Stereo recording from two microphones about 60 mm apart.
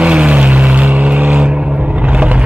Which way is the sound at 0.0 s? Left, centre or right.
Centre.